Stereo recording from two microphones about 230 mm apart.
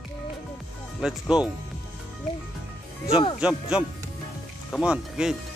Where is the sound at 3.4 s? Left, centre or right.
Centre.